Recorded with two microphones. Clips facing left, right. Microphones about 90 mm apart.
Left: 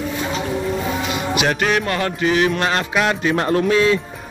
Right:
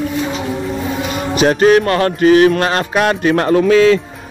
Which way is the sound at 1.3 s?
35° right (ahead or behind).